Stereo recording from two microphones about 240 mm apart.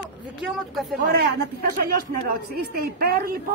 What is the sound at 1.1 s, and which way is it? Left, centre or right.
A woman's voice, right.